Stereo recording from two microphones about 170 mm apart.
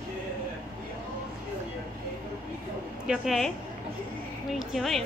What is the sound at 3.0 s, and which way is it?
Speech, 5° right (ahead or behind).